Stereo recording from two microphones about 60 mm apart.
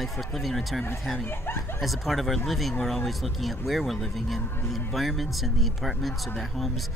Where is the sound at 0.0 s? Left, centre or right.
Centre.